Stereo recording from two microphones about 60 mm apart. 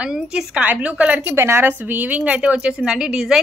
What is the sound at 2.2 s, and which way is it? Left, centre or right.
Speech, centre.